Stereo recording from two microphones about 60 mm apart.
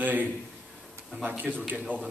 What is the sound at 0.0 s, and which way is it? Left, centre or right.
A man's voice, right.